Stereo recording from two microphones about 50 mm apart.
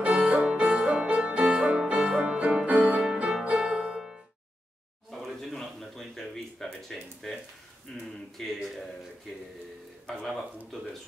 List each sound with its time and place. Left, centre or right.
0.0 s music: right
0.4 s music: centre; by 3.0 s right
3.0 s music: centre
5.1 s a sound: centre
7.9 s speech: centre
8.4 s speech: centre